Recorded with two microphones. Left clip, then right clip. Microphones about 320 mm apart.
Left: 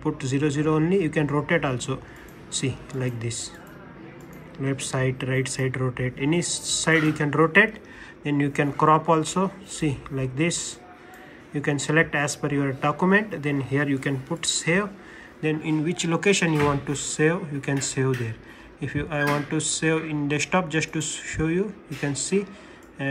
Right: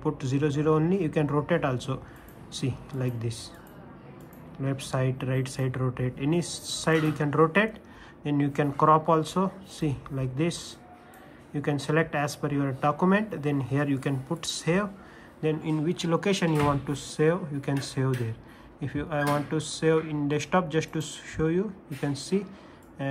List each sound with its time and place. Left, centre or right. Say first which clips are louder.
0.0 s speech: left 3 dB; centre
4.6 s speech: left 4 dB; centre
6.4 s speech: left 7 dB; centre
6.8 s speech: left 4 dB; centre
11.5 s speech: left 4 dB; centre